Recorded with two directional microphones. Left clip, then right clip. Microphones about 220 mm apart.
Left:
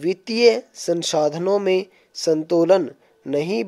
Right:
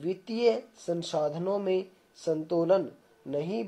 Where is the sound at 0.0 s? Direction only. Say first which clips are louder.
Left 11 dB; 40° left (ahead or behind).